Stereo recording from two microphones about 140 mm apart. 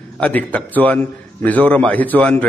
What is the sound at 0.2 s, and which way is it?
A man's voice, 10° left (ahead or behind).